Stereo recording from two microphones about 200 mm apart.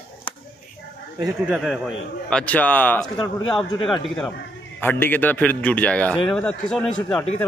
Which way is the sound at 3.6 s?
25° left (ahead or behind).